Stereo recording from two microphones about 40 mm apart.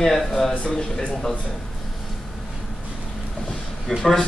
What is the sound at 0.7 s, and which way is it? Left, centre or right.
Speech, left.